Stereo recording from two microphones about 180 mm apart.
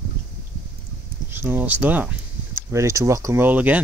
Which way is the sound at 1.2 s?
10° right (ahead or behind).